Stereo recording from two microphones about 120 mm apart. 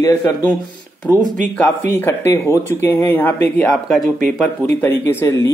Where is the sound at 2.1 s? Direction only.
25° left (ahead or behind).